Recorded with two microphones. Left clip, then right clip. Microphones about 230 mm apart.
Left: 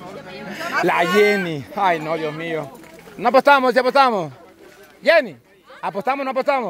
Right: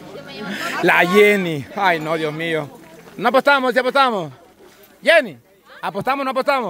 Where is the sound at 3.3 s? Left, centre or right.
Centre.